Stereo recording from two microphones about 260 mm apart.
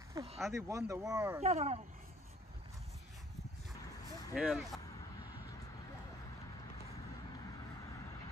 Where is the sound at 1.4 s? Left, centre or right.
Right.